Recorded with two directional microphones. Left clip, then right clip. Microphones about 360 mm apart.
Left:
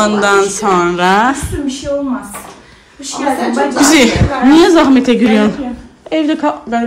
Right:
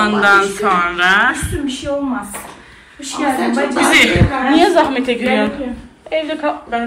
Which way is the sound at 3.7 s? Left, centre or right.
Centre.